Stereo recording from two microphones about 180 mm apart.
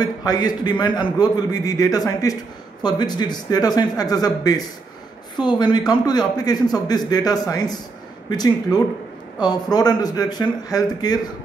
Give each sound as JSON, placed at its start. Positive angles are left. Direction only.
{"t": 0.0, "sound": "a man's voice", "side_deg": 20}